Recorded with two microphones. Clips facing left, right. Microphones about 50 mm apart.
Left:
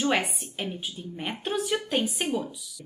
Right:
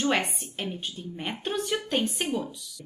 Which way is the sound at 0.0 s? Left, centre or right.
Centre.